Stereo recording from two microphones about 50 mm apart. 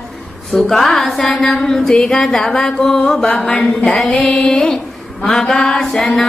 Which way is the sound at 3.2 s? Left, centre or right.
Left.